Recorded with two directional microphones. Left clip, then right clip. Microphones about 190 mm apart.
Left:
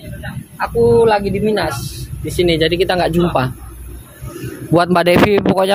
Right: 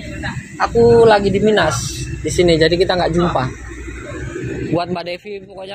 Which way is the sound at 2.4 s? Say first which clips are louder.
Right 2 dB; centre (ahead or behind).